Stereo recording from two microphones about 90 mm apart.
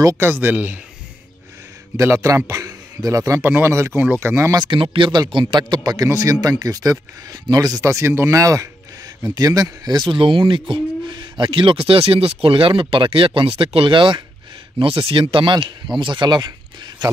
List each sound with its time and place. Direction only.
0.2 s speech: 25° right (ahead or behind)
2.0 s speech: 35° right (ahead or behind)
3.3 s speech: 25° right (ahead or behind)
4.6 s speech: 70° right (ahead or behind)
5.3 s a man's voice: 60° right (ahead or behind)
6.0 s speech: 35° right (ahead or behind); by 14.2 s 65° right (ahead or behind)
14.8 s speech: 85° right; by 17.1 s 50° right (ahead or behind)